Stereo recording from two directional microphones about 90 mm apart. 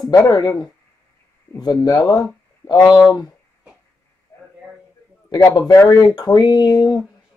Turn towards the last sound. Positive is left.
turn(degrees=50)  # may be behind; listen again after turning